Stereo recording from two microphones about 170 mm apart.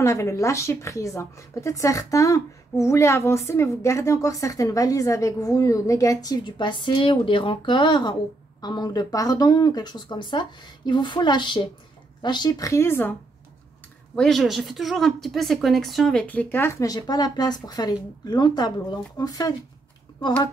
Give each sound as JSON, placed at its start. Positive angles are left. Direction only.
{"t": 0.0, "sound": "speech", "side_deg": 20}
{"t": 14.1, "sound": "speech", "side_deg": 0}